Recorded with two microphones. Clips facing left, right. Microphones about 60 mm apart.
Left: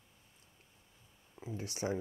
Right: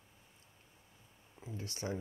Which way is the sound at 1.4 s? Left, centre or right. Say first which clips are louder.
Left 4 dB; centre.